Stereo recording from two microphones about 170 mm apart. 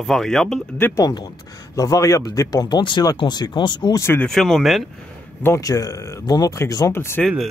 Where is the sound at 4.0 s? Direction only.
10° left (ahead or behind).